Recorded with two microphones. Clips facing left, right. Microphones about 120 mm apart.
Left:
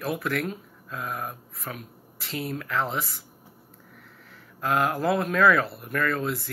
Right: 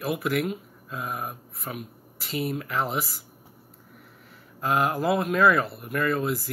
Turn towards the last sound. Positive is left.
turn(degrees=-5)  # may be behind; listen again after turning